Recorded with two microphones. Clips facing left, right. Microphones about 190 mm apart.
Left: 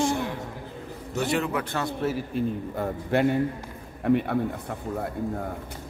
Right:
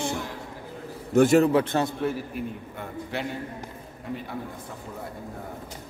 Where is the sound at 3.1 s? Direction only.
50° left (ahead or behind).